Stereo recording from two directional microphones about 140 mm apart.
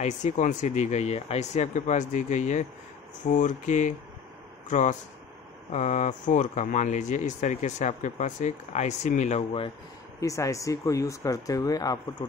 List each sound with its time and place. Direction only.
0.0 s speech: 60° left (ahead or behind)
10.2 s speech: 25° left (ahead or behind)